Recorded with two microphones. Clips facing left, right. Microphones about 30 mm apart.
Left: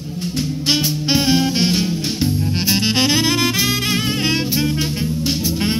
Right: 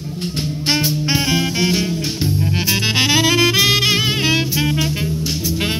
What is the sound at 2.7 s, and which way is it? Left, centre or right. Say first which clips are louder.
Saxophone: right 1 dB; right.